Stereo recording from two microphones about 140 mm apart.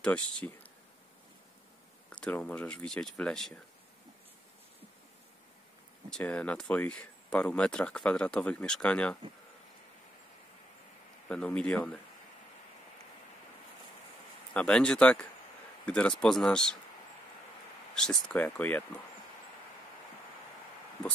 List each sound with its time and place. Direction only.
0.0 s speech: 10° left (ahead or behind)
2.0 s speech: 10° left (ahead or behind)
6.0 s speech: 10° left (ahead or behind)
11.2 s speech: 5° left (ahead or behind)
14.5 s speech: 5° left (ahead or behind)
17.9 s speech: 5° left (ahead or behind)